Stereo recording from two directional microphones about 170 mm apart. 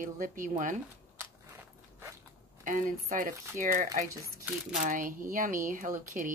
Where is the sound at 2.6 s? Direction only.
50° right (ahead or behind).